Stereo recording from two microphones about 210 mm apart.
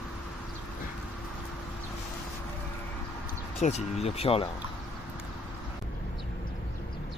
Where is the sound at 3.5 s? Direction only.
30° left (ahead or behind).